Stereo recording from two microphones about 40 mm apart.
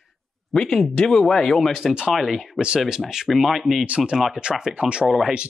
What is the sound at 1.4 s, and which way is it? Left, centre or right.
Speech, centre.